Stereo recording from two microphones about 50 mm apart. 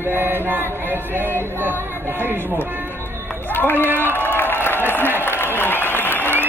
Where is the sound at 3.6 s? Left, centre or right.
Left.